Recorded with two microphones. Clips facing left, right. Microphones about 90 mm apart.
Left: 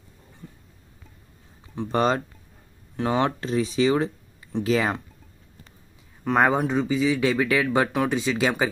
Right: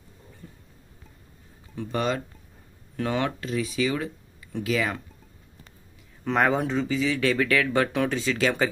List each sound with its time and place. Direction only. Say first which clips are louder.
1.8 s speech: left 5 dB; 35° left (ahead or behind)
3.0 s speech: left 4 dB; 25° left (ahead or behind)
6.3 s speech: left 2 dB; 15° left (ahead or behind)